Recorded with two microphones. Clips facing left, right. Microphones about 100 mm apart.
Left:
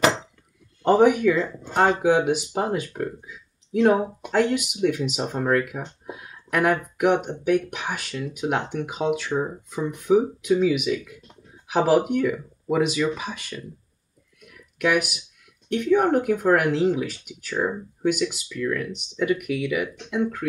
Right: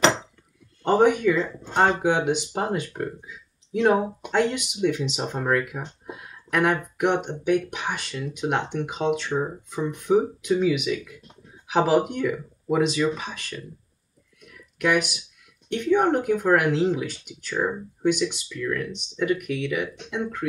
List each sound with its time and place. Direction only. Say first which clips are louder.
1.0 s speech: left 1 dB; 5° left (ahead or behind)
14.8 s speech: even; 5° left (ahead or behind)